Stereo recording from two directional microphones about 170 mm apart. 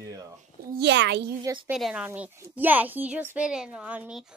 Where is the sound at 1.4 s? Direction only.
20° right (ahead or behind).